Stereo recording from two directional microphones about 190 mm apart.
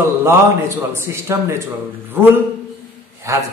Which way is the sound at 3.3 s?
15° right (ahead or behind).